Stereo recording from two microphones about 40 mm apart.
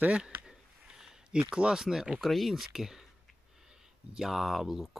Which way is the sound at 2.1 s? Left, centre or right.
Centre.